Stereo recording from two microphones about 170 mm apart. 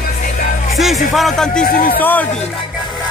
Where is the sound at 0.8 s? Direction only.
Centre (ahead or behind).